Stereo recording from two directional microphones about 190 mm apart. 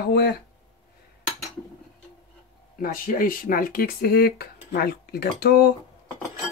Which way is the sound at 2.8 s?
50° left (ahead or behind).